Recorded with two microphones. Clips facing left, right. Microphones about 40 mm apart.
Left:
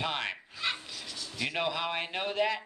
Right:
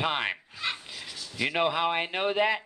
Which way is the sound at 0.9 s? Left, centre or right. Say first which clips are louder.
Right 2 dB; centre.